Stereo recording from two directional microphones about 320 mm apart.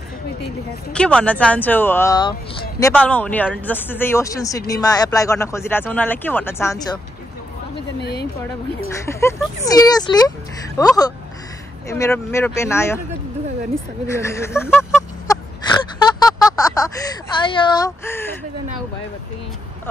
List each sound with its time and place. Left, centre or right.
0.9 s speech: centre
8.0 s speech: left
9.0 s speech: centre
14.0 s speech: centre
14.8 s a sound: centre
17.5 s speech: centre